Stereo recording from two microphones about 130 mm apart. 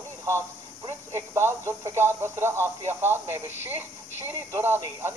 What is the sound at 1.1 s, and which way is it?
Speech, 20° right (ahead or behind).